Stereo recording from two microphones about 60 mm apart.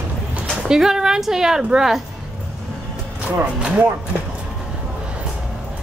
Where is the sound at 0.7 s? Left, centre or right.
Centre.